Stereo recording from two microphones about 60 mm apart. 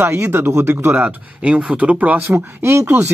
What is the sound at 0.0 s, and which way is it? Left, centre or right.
Speech, right.